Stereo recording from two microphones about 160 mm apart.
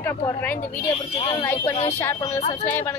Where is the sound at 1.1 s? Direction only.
30° left (ahead or behind).